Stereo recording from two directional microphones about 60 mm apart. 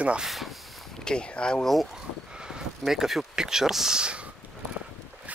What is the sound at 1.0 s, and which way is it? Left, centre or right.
Speech, centre.